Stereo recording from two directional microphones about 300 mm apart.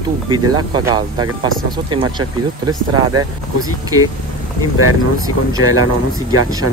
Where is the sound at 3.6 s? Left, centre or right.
Centre.